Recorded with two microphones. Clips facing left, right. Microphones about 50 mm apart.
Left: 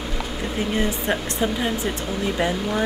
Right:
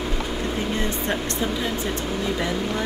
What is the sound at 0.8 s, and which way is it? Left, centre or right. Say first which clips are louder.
Speech: left 2 dB; centre.